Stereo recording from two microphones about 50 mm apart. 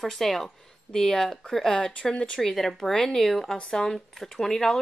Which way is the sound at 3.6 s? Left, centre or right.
Centre.